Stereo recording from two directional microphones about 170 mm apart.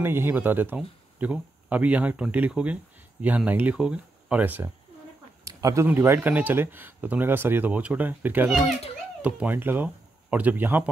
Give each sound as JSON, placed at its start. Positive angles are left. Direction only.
{"t": 0.0, "sound": "speech", "side_deg": -15}
{"t": 5.4, "sound": "a sound", "side_deg": -20}
{"t": 5.9, "sound": "speech", "side_deg": -15}